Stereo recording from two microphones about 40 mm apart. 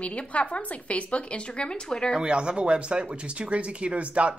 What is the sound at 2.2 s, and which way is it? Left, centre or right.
Speech, right.